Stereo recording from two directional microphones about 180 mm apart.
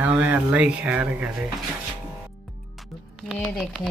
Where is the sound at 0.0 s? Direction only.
10° right (ahead or behind).